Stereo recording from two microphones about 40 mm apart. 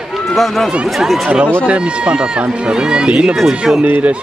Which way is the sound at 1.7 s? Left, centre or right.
Right.